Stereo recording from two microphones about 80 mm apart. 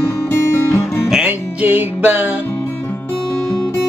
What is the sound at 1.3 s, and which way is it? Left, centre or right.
Music, right.